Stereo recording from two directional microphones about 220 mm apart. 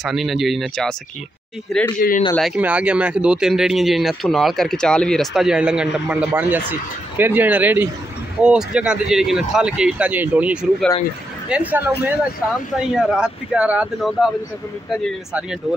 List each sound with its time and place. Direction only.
0.0 s speech: centre (ahead or behind)
2.0 s speech: 40° left (ahead or behind)
2.3 s speech: 5° right (ahead or behind)